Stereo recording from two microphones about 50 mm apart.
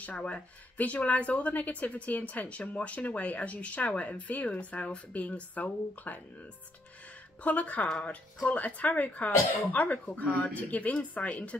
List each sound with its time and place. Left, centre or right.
0.0 s speech: left
7.4 s speech: left